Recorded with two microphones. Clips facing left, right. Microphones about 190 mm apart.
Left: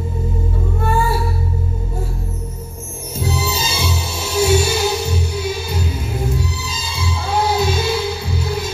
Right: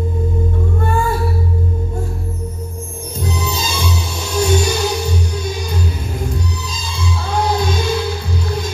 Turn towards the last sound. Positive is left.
turn(degrees=5)  # may be behind; listen again after turning